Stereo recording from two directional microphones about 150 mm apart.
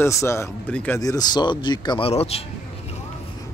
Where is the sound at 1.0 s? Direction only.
25° left (ahead or behind); by 2.4 s 40° left (ahead or behind).